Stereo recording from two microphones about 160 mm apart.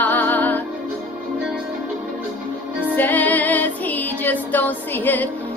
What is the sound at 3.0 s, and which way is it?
Music, 10° left (ahead or behind).